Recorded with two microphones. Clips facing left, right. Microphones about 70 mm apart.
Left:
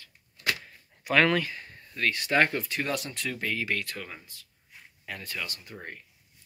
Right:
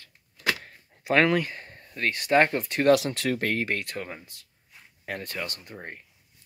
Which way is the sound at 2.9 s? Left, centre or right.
Right.